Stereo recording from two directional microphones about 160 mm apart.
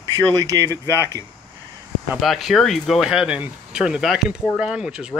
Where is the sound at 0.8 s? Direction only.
20° left (ahead or behind).